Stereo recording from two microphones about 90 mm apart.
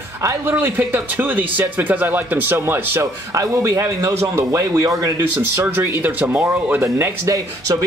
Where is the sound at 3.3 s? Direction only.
35° right (ahead or behind).